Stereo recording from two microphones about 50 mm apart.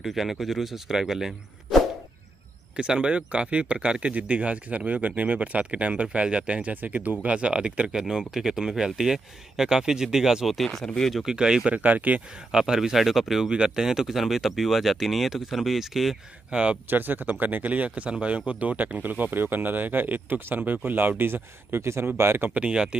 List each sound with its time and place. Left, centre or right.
0.0 s speech: centre
2.7 s speech: centre
6.7 s speech: right
7.9 s speech: centre
11.2 s speech: centre
11.7 s speech: right
12.4 s speech: centre
13.5 s speech: centre
16.9 s speech: right
22.5 s speech: right